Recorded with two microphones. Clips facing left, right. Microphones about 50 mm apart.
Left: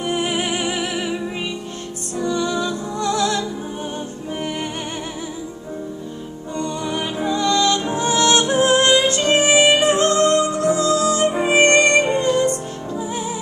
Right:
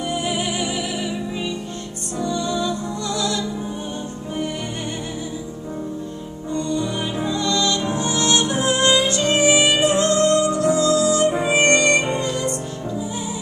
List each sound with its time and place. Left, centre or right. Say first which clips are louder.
0.1 s music: left 4 dB; left
2.1 s music: left 2 dB; left
6.5 s music: right 1 dB; left